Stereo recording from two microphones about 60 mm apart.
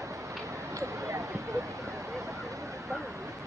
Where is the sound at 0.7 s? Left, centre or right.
Right.